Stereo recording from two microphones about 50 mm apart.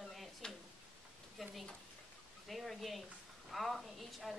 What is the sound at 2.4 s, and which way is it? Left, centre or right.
A woman's voice, centre.